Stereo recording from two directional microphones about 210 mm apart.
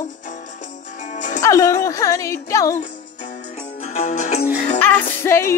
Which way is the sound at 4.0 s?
35° left (ahead or behind).